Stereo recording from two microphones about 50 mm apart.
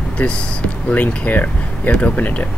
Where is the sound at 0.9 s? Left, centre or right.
Left.